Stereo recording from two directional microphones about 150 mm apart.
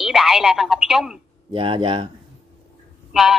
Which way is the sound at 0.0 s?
Centre (ahead or behind).